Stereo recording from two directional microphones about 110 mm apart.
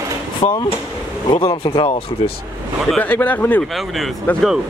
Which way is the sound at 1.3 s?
50° left (ahead or behind).